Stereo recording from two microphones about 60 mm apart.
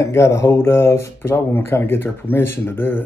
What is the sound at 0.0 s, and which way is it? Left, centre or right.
Speech, left.